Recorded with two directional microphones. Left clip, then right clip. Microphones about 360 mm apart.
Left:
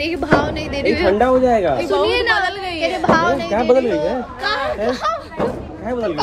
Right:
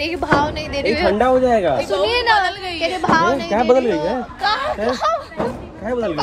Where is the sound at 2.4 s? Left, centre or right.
Centre.